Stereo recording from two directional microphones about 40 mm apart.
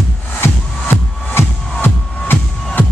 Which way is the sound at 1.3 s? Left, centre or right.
Left.